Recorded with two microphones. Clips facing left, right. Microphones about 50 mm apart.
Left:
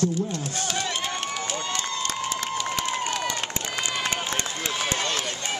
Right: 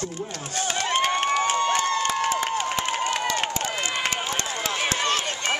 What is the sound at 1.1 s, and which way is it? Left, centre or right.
Run, right.